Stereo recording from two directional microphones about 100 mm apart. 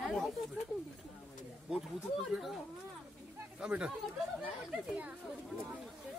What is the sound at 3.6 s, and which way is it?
Speech, 10° right (ahead or behind).